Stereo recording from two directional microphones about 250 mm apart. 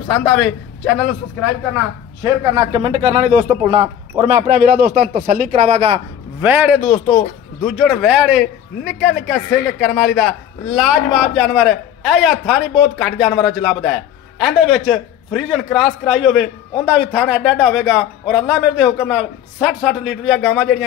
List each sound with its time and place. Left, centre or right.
0.1 s a man's voice: centre
2.2 s a man's voice: centre
6.4 s a man's voice: centre